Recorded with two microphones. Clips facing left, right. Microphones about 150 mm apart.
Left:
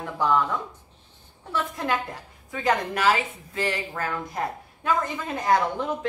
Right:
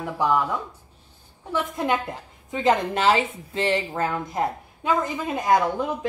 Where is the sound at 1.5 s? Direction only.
20° right (ahead or behind).